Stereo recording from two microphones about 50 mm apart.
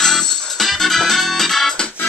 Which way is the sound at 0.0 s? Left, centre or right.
Centre.